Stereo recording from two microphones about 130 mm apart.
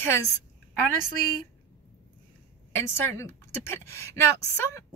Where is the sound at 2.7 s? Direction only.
20° left (ahead or behind).